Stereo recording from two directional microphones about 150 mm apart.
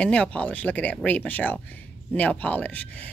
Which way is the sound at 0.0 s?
10° left (ahead or behind).